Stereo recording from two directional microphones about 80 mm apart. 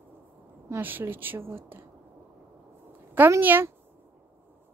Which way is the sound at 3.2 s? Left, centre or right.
Right.